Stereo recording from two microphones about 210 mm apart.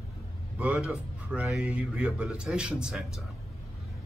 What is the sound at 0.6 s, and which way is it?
A man's voice, 5° right (ahead or behind).